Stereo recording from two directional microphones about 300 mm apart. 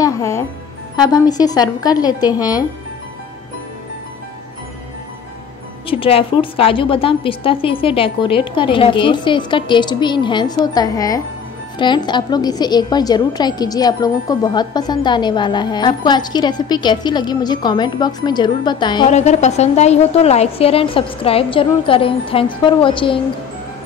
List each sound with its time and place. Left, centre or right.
0.0 s music: centre
1.0 s a woman's voice: centre
5.9 s a woman's voice: centre